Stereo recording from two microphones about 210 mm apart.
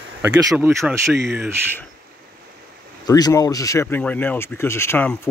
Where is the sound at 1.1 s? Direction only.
50° right (ahead or behind).